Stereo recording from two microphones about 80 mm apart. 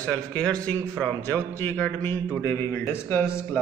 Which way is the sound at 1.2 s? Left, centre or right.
Left.